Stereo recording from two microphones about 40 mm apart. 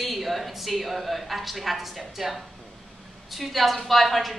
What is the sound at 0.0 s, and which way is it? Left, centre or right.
A woman's voice, centre.